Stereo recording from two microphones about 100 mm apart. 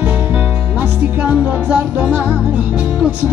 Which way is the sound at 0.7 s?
10° right (ahead or behind).